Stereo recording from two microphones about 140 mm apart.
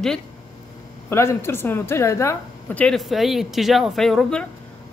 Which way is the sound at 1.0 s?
20° left (ahead or behind).